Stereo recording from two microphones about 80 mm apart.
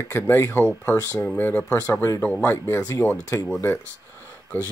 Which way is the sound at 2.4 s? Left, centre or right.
Left.